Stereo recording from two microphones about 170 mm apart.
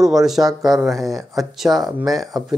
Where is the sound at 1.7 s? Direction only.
20° right (ahead or behind).